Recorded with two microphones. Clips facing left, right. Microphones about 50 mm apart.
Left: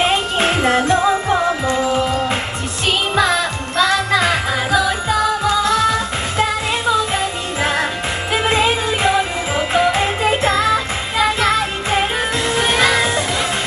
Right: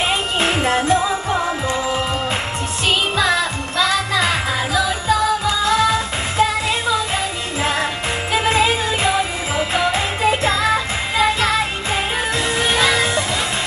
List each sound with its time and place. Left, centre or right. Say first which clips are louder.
0.0 s music: left 3 dB; left
3.7 s music: left 3 dB; left
8.3 s music: even; left